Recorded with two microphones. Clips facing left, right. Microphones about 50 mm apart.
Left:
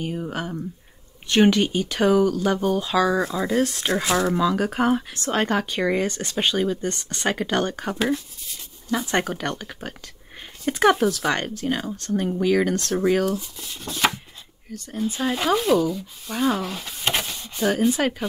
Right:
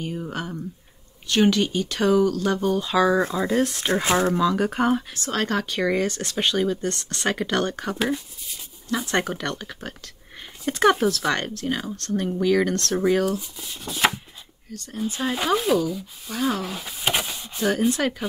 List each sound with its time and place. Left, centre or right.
0.0 s speech: centre
1.2 s speech: left; by 3.9 s centre
3.9 s speech: right
4.3 s speech: centre
5.3 s speech: centre
9.7 s speech: centre
12.9 s speech: centre
14.7 s speech: centre
15.1 s speech: centre